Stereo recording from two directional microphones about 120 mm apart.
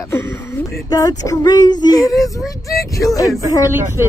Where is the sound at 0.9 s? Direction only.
30° left (ahead or behind).